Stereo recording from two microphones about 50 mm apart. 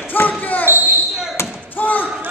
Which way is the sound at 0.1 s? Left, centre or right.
Left.